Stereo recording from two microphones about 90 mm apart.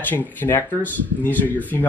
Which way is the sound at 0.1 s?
25° left (ahead or behind).